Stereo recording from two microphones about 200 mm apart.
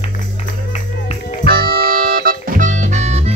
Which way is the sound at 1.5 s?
50° right (ahead or behind).